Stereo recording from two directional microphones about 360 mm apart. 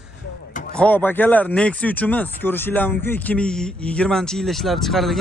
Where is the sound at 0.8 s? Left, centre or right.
Centre.